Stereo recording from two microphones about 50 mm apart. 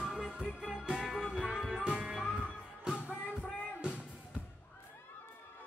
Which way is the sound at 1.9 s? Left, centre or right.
Centre.